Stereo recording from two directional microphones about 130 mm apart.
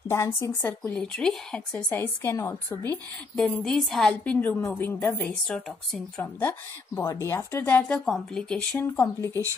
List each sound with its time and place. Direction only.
0.1 s a woman's voice: 20° left (ahead or behind)
0.9 s a woman's voice: 5° left (ahead or behind)
1.9 s a woman's voice: 20° left (ahead or behind)
3.3 s a woman's voice: 5° left (ahead or behind); by 5.3 s 20° left (ahead or behind)
5.5 s a woman's voice: 5° left (ahead or behind)
7.0 s a woman's voice: 25° left (ahead or behind); by 8.8 s 5° left (ahead or behind)
8.8 s a woman's voice: 20° left (ahead or behind)